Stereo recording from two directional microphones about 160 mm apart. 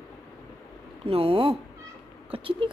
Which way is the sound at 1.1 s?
35° right (ahead or behind).